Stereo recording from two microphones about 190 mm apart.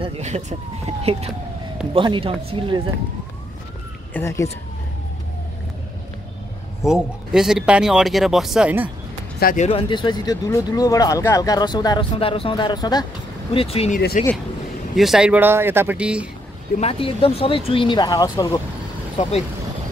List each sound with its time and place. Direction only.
0.0 s speech: 35° right (ahead or behind)
4.1 s speech: 15° left (ahead or behind)
6.8 s speech: 5° right (ahead or behind)
9.4 s speech: 45° left (ahead or behind)
9.7 s speech: 25° left (ahead or behind)
13.9 s speech: 45° left (ahead or behind)
15.0 s speech: centre (ahead or behind)
16.8 s speech: 30° left (ahead or behind)
19.2 s speech: 35° left (ahead or behind)